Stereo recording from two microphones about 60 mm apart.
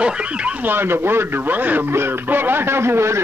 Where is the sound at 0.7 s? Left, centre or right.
Right.